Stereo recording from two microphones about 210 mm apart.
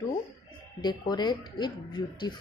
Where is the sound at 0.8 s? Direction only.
20° left (ahead or behind).